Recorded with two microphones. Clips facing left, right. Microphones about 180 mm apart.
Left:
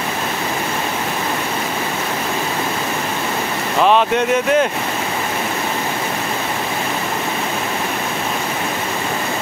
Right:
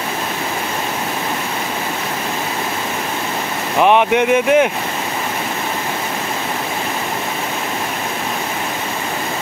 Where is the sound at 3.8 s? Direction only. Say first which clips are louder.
Right 2 dB; 15° right (ahead or behind).